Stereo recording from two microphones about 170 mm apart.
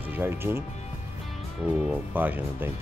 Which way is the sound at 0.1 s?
15° right (ahead or behind).